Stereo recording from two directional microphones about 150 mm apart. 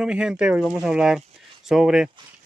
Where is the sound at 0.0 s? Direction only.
5° right (ahead or behind).